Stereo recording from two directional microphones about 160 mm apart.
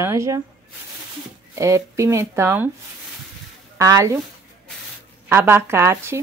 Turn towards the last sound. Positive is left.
turn(degrees=-15)  # may be behind; listen again after turning